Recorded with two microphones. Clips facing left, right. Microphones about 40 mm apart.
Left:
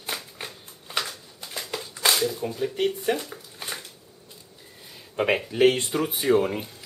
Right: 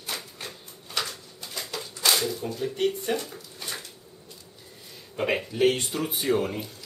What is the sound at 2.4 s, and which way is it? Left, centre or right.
Speech, centre.